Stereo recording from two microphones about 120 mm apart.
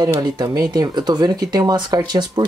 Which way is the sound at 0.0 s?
35° right (ahead or behind).